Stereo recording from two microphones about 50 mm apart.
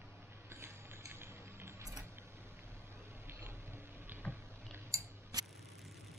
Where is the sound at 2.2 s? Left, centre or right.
Right.